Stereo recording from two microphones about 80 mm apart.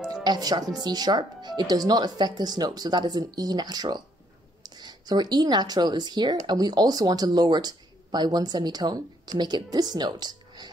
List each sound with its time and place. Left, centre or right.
0.1 s speech: right